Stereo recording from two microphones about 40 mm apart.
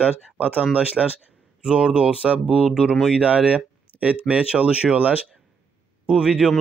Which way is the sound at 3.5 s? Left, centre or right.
Right.